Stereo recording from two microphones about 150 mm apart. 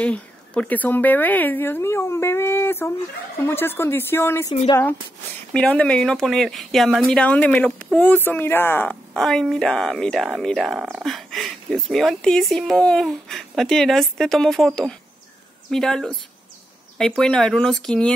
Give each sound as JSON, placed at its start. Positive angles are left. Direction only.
{"t": 0.0, "sound": "speech", "side_deg": 10}
{"t": 5.5, "sound": "speech", "side_deg": 5}